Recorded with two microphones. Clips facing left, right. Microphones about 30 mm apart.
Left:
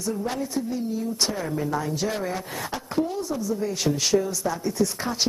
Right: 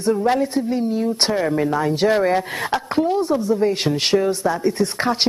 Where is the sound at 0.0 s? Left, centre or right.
Right.